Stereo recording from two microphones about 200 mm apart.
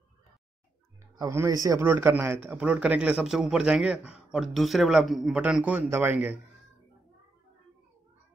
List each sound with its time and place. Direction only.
1.1 s a man's voice: 15° right (ahead or behind)